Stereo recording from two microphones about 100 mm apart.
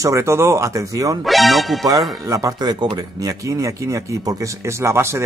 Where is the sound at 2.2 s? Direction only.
35° right (ahead or behind).